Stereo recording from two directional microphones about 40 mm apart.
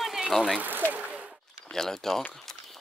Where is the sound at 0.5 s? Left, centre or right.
Right.